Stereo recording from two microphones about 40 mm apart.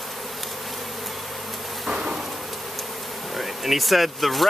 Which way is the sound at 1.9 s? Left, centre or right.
Centre.